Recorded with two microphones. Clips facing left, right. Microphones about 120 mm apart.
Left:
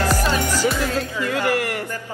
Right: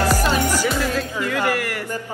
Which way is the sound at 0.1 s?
10° right (ahead or behind).